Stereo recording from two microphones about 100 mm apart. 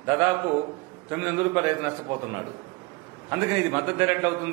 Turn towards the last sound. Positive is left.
turn(degrees=-20)  # may be behind; listen again after turning